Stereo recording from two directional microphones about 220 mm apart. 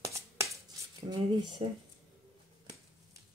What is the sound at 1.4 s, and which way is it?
Speech, 20° right (ahead or behind).